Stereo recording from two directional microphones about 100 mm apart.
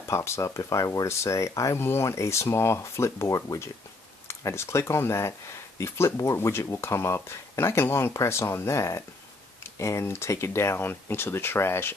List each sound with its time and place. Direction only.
0.1 s speech: 25° left (ahead or behind)